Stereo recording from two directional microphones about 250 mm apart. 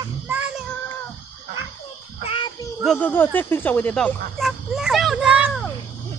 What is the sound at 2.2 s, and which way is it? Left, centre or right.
Child singing, centre.